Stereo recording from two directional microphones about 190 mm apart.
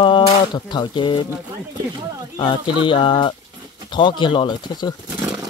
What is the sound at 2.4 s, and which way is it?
Speech, 25° left (ahead or behind).